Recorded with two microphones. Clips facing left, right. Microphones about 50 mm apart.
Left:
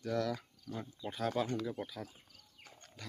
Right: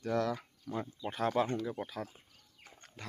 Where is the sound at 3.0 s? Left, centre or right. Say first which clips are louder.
Right 4 dB; right.